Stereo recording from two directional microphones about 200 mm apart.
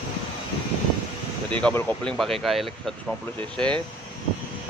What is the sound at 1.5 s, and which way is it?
Speech, 10° left (ahead or behind).